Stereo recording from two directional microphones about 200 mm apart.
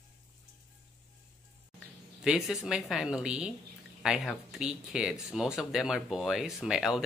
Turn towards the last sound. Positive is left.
turn(degrees=-5)  # may be behind; listen again after turning